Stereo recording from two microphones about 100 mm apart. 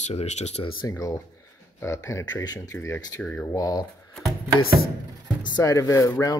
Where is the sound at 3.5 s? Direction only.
40° left (ahead or behind).